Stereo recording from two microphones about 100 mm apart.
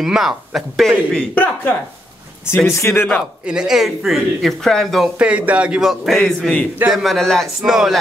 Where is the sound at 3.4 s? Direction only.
5° right (ahead or behind).